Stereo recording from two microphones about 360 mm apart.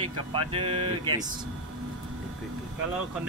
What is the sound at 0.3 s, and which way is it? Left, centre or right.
Speech, centre.